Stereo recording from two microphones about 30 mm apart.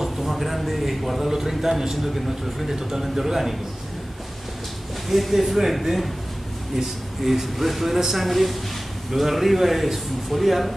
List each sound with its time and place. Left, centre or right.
0.0 s a man's voice: centre
2.7 s speech: centre
3.2 s a man's voice: centre
5.1 s a man's voice: centre